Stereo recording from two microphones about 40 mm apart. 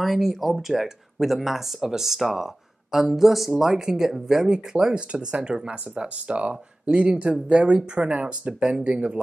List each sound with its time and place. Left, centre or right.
0.0 s speech: centre
5.1 s speech: right